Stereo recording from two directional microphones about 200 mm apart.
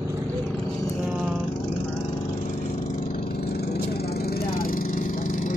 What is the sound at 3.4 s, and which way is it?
Vehicle, 55° left (ahead or behind).